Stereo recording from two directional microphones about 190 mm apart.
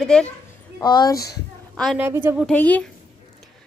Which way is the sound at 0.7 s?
20° left (ahead or behind).